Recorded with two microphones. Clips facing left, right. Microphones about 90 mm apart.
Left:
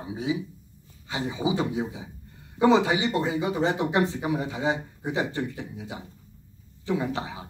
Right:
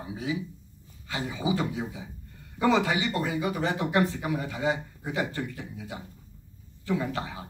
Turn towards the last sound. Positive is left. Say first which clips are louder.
# left 2 dB
turn(degrees=25)  # may be behind; listen again after turning